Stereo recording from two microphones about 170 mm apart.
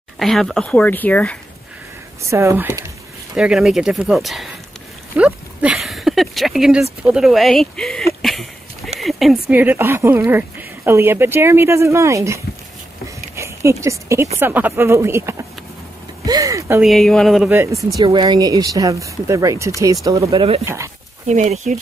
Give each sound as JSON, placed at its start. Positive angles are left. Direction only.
{"t": 0.2, "sound": "speech", "side_deg": 0}
{"t": 2.2, "sound": "speech", "side_deg": -15}
{"t": 3.3, "sound": "speech", "side_deg": -5}
{"t": 5.1, "sound": "a sound", "side_deg": -5}
{"t": 6.8, "sound": "speech", "side_deg": -5}
{"t": 13.4, "sound": "speech", "side_deg": -15}
{"t": 16.8, "sound": "speech", "side_deg": 0}
{"t": 17.5, "sound": "speech", "side_deg": -15}
{"t": 17.9, "sound": "speech", "side_deg": -25}
{"t": 21.3, "sound": "speech", "side_deg": -45}